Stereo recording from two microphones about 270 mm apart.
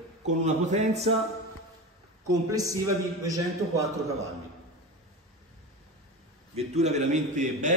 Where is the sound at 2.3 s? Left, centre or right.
Centre.